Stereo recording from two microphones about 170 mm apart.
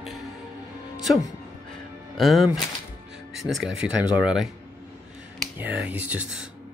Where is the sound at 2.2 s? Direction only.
Centre (ahead or behind).